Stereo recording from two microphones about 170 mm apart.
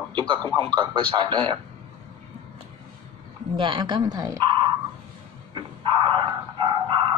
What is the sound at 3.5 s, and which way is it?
A man's voice, 30° right (ahead or behind).